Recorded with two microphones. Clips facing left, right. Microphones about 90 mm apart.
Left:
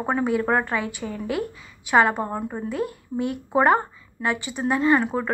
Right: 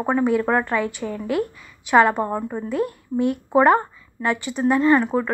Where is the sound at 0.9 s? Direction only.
55° right (ahead or behind).